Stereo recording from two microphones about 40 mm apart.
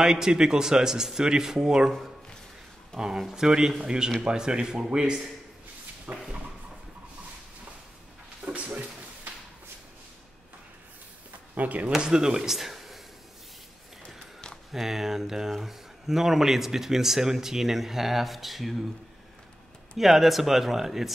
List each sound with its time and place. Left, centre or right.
0.0 s speech: centre
1.9 s speech: centre
3.0 s speech: centre
6.1 s a sound: right
8.5 s a sound: right
11.5 s speech: right
12.0 s speech: centre
12.5 s a sound: centre
14.7 s speech: centre
20.0 s speech: centre